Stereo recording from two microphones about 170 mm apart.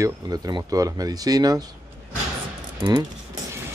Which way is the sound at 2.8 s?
25° right (ahead or behind).